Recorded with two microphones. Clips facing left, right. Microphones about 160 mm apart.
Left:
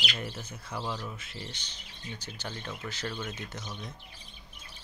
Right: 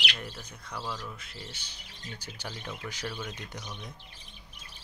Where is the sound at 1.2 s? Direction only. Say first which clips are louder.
Left 2 dB; centre (ahead or behind).